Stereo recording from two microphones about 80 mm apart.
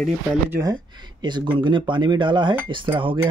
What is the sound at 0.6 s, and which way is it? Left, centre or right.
Speech, right.